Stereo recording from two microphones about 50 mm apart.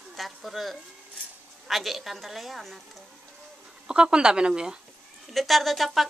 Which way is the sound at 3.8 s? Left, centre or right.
Centre.